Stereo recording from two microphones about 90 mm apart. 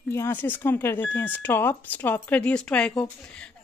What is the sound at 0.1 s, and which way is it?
Speech, 25° left (ahead or behind).